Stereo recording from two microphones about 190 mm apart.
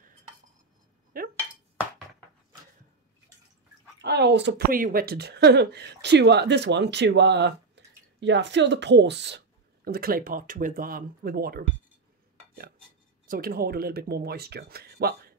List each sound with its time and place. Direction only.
1.1 s chink: 50° right (ahead or behind)
4.0 s speech: 60° right (ahead or behind)
9.8 s speech: 50° right (ahead or behind)
13.3 s speech: 50° right (ahead or behind)